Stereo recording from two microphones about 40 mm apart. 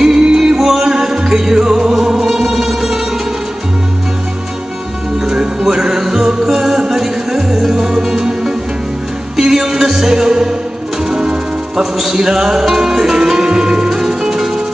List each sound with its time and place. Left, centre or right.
0.0 s music: centre
5.2 s music: centre